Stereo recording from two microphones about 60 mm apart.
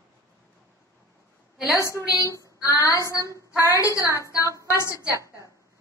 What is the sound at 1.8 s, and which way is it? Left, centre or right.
Speech, left.